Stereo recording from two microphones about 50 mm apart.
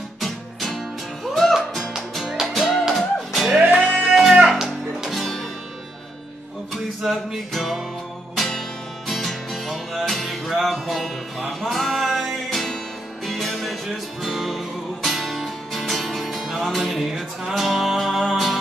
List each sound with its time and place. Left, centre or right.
0.2 s music: centre
2.4 s music: centre
7.0 s music: centre